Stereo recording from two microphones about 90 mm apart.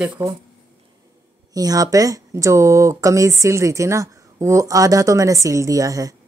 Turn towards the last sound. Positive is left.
turn(degrees=-40)  # may be behind; listen again after turning